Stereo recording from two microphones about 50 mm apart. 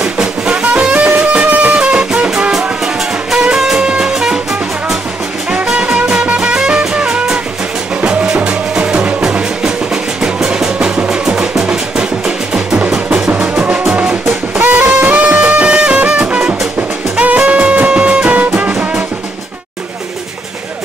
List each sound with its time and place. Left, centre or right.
0.0 s music: centre
5.5 s music: right
13.3 s music: right